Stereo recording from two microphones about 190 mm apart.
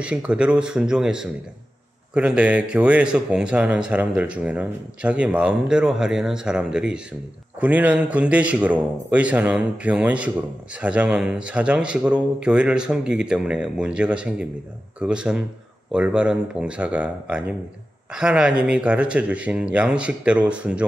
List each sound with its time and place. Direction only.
0.0 s speech: 5° right (ahead or behind)